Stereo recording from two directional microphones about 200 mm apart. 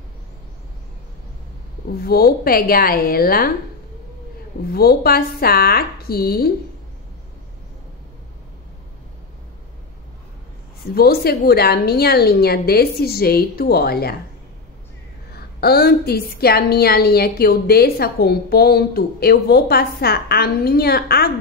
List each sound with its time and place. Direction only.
2.0 s a woman's voice: 50° left (ahead or behind)
4.7 s a woman's voice: 50° left (ahead or behind)
11.0 s a woman's voice: 50° left (ahead or behind)
15.3 s a woman's voice: 50° left (ahead or behind)